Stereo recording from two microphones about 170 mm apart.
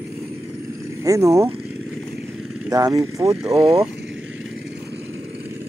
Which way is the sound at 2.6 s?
20° right (ahead or behind).